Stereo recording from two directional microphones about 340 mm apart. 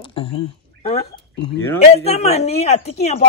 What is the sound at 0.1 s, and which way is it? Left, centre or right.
Speech, centre.